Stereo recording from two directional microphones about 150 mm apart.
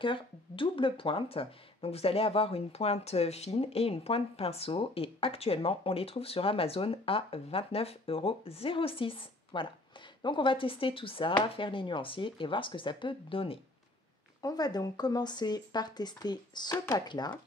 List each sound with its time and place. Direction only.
0.0 s speech: 35° left (ahead or behind)
14.4 s speech: 25° left (ahead or behind)